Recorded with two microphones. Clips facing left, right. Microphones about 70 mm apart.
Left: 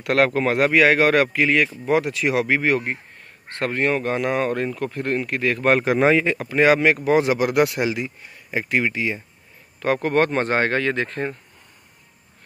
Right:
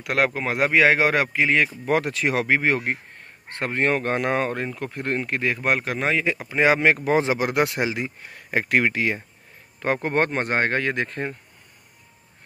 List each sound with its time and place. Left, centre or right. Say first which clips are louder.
0.0 s speech: left 4 dB; centre
1.9 s speech: left 2 dB; right
2.8 s a sound: right 1 dB; right
3.5 s speech: left 1 dB; right
5.6 s a man's voice: left 8 dB; centre
5.9 s speech: left 7 dB; centre
6.2 s speech: left 2 dB; centre
6.5 s speech: left 2 dB; right
8.2 s speech: right 2 dB; right
9.8 s speech: left 3 dB; right